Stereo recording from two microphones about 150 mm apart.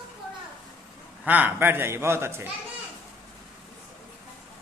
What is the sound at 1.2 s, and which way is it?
A man's voice, 10° right (ahead or behind).